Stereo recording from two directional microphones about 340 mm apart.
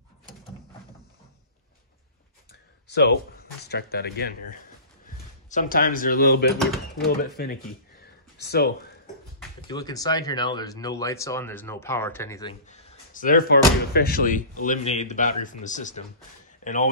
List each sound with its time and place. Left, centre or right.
2.9 s speech: left
9.7 s speech: centre